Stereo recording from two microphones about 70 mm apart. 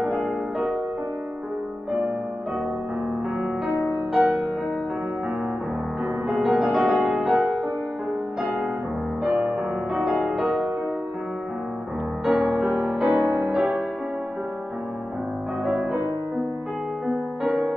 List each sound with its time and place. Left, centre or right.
0.2 s music: centre
3.6 s music: centre
6.2 s music: centre
9.3 s music: centre
10.0 s music: centre
12.3 s music: centre
15.6 s music: centre
17.1 s music: centre